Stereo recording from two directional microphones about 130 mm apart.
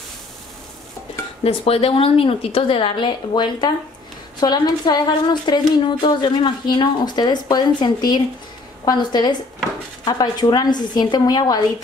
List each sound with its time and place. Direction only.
1.4 s a woman's voice: 50° left (ahead or behind); by 11.6 s 30° left (ahead or behind)